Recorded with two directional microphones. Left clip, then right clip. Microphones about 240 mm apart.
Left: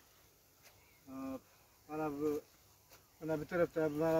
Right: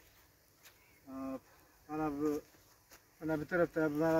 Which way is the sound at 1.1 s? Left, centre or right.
Left.